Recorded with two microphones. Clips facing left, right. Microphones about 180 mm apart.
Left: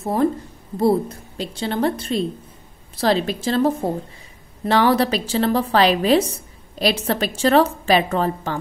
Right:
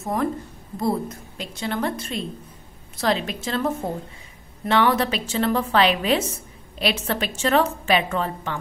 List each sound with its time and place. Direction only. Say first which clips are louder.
0.0 s a woman's voice: left 5 dB; 30° left (ahead or behind)